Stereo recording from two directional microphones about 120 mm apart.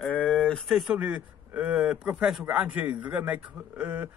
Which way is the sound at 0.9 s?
10° right (ahead or behind).